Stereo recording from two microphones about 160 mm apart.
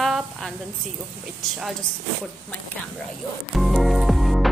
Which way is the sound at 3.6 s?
Centre (ahead or behind).